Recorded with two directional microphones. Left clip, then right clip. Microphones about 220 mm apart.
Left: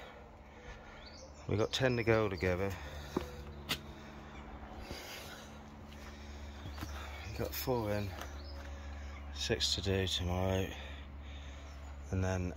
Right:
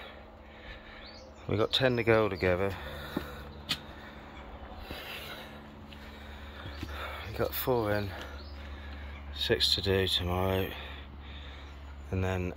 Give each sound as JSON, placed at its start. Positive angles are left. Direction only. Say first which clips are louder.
{"t": 1.5, "sound": "speech", "louder": "right 5 dB", "side_deg": 10}
{"t": 4.8, "sound": "a sound", "louder": "right 6 dB", "side_deg": 10}
{"t": 7.0, "sound": "speech", "louder": "right 9 dB", "side_deg": 5}
{"t": 9.4, "sound": "speech", "louder": "right 7 dB", "side_deg": 10}
{"t": 12.1, "sound": "speech", "louder": "right 5 dB", "side_deg": 5}